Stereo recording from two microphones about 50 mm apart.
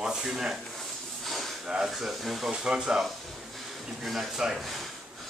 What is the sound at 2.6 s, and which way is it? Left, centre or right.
Speech, centre.